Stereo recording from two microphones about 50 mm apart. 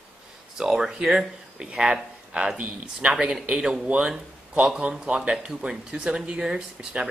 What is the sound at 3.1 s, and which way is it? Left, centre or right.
Speech, centre.